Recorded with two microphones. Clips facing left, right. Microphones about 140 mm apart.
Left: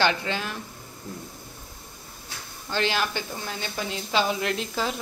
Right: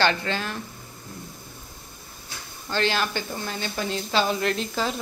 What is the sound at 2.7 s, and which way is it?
A woman's voice, 15° left (ahead or behind).